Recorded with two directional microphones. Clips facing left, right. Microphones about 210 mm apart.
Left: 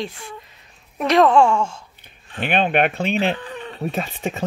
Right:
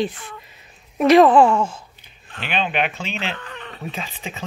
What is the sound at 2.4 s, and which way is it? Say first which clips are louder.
Speech: left 5 dB; 55° left (ahead or behind).